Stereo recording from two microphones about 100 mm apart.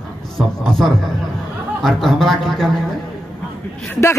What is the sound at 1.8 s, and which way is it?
Speech, centre (ahead or behind).